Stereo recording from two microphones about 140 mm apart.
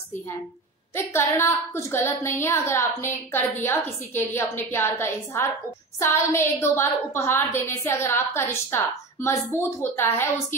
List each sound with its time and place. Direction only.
0.9 s a woman's voice: 20° left (ahead or behind)